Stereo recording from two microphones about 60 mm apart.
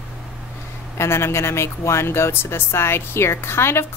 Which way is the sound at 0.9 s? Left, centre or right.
Left.